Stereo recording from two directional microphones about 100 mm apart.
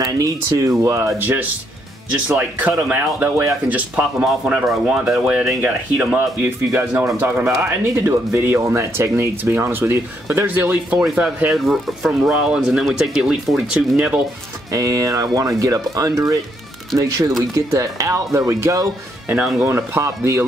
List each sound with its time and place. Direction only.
0.0 s speech: 35° right (ahead or behind); by 5.5 s 10° right (ahead or behind)
6.1 s speech: 25° right (ahead or behind)
11.0 s speech: 5° right (ahead or behind)
14.7 s speech: 35° right (ahead or behind)